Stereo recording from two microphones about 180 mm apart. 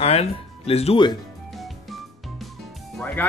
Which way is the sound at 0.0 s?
35° left (ahead or behind).